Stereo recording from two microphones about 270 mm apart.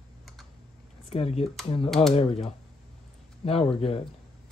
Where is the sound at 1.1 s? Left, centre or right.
Left.